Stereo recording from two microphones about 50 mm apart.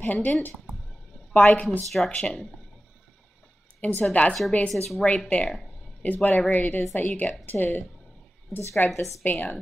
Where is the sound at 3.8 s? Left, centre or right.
Left.